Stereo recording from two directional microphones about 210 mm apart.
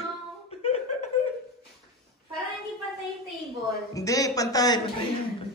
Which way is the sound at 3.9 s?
15° left (ahead or behind).